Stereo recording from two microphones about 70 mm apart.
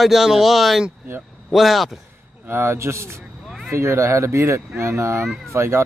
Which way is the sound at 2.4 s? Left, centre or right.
Right.